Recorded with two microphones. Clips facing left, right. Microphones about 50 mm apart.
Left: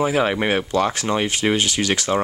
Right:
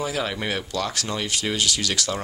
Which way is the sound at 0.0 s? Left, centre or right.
Left.